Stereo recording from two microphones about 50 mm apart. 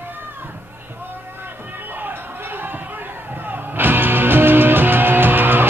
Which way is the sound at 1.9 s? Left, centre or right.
Right.